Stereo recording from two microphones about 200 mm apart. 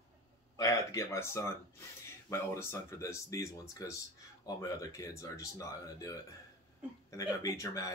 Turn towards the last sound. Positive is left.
turn(degrees=15)  # may be behind; listen again after turning